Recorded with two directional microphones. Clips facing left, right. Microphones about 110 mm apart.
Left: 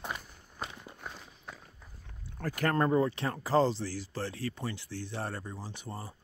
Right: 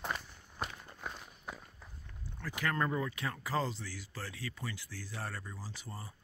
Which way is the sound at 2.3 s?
50° left (ahead or behind).